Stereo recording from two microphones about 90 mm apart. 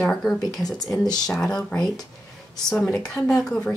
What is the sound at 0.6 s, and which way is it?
Speech, 45° left (ahead or behind).